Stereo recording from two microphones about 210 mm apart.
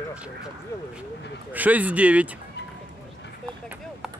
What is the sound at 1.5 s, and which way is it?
Speech, 5° right (ahead or behind).